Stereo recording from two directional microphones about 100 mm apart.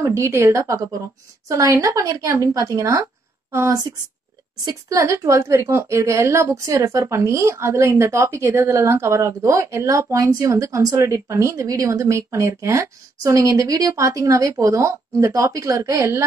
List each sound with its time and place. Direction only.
0.0 s a woman's voice: 30° right (ahead or behind)